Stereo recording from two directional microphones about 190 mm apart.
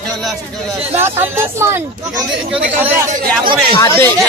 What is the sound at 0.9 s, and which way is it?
Speech, 10° right (ahead or behind).